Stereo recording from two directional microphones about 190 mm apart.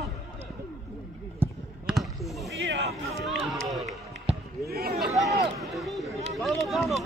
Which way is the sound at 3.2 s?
Centre (ahead or behind).